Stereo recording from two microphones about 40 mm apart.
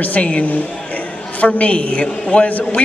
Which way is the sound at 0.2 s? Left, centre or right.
Left.